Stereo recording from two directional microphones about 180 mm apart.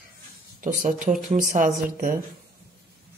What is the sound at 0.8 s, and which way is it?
Speech, 45° right (ahead or behind).